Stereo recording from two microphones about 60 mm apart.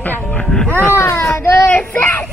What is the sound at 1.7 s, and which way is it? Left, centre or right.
Speech, left.